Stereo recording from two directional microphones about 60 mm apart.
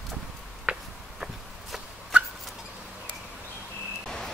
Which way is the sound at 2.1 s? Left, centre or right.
Centre.